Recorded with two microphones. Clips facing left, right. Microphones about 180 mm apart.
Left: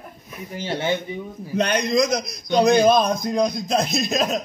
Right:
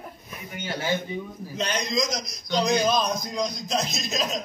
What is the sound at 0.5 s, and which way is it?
Speech, 30° left (ahead or behind).